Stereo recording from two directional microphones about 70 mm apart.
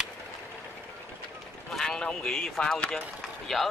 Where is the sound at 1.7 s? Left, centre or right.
Centre.